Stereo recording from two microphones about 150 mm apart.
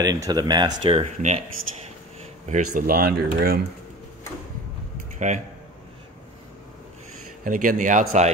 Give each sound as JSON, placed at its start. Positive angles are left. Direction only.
{"t": 0.0, "sound": "speech", "side_deg": -25}
{"t": 0.9, "sound": "speech", "side_deg": -50}
{"t": 2.9, "sound": "speech", "side_deg": -90}
{"t": 5.2, "sound": "speech", "side_deg": -55}
{"t": 7.4, "sound": "speech", "side_deg": -60}